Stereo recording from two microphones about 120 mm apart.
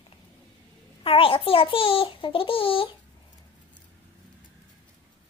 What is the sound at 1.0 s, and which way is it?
A child's voice, 50° left (ahead or behind).